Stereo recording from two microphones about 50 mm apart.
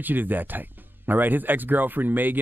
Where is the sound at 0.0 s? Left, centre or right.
Right.